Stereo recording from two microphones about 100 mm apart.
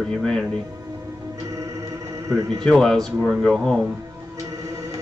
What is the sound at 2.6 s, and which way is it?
Speech, 5° left (ahead or behind).